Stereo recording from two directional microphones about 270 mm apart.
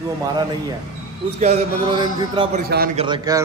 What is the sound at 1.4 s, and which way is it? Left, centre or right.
A man's voice, right.